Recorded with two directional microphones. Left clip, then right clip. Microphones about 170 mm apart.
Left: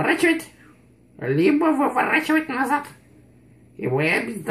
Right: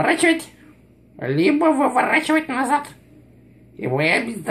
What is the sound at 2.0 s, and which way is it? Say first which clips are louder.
Speech: right 2 dB; 15° right (ahead or behind).